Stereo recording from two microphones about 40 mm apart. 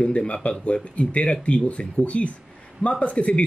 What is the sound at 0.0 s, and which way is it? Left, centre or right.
A man's voice, left.